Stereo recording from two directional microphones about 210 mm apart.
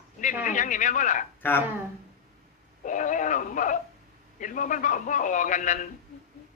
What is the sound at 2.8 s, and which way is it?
A man's voice, 35° left (ahead or behind).